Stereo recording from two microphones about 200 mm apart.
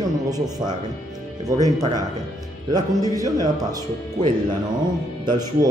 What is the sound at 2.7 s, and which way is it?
Speech, 20° right (ahead or behind).